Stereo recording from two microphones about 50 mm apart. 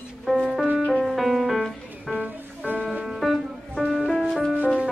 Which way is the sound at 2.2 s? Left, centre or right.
Right.